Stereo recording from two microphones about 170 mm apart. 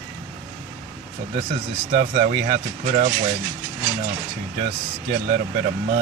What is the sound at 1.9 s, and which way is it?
Speech, 45° right (ahead or behind).